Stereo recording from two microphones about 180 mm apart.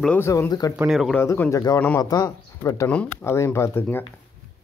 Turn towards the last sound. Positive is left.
turn(degrees=10)  # may be behind; listen again after turning